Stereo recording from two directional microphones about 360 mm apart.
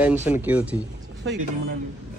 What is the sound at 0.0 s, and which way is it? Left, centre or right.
Speech, centre.